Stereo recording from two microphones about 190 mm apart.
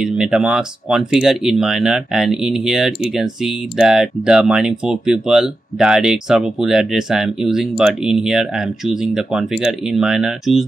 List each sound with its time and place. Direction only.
0.0 s speech: 5° right (ahead or behind)